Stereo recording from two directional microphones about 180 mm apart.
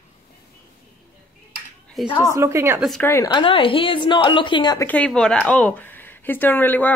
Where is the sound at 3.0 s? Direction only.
15° left (ahead or behind).